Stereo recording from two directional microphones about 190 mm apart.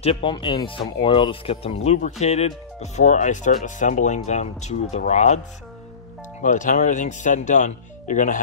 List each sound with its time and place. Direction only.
0.0 s speech: 30° left (ahead or behind)
6.4 s speech: 40° left (ahead or behind)